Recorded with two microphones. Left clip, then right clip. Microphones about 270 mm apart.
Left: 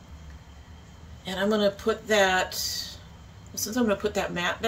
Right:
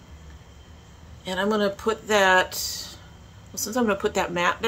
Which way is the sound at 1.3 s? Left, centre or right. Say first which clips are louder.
Right 1 dB; centre.